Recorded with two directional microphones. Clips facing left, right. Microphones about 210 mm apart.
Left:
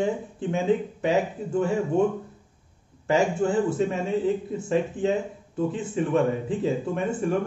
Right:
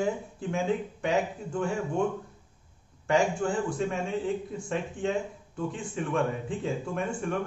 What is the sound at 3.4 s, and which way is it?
Speech, 5° left (ahead or behind).